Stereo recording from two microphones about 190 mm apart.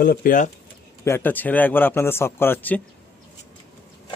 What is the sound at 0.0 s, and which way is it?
Speech, 50° left (ahead or behind).